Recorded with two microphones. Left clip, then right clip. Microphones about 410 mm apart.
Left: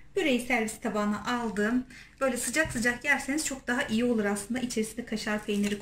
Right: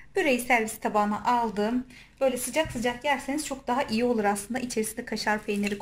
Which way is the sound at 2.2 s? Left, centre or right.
Centre.